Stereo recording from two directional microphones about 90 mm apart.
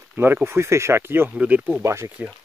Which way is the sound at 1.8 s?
30° right (ahead or behind).